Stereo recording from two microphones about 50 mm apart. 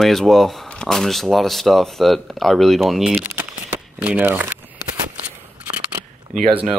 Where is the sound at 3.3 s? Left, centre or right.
Right.